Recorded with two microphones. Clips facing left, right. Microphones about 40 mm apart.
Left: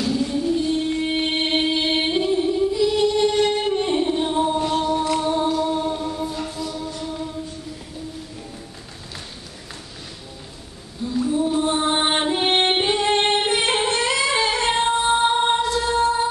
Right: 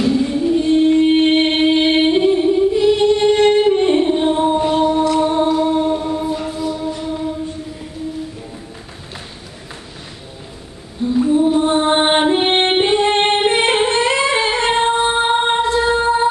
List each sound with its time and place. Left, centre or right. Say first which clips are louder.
0.0 s female singing: right 6 dB; right
2.7 s singing: right 6 dB; right
3.6 s music: right 7 dB; right
11.1 s music: right 7 dB; right